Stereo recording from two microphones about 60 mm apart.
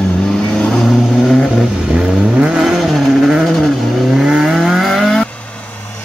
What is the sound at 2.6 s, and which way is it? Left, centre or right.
Vehicle, centre.